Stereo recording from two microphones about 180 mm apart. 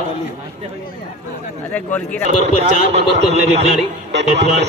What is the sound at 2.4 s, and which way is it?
A man's voice, 35° right (ahead or behind).